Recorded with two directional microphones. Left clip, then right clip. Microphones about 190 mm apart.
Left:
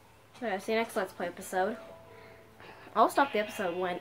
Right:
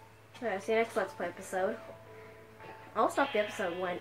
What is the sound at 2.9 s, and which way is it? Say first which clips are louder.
Speech: left 4 dB; 40° left (ahead or behind).